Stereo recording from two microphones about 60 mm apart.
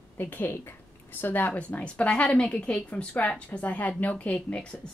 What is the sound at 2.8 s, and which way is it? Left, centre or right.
A woman's voice, left.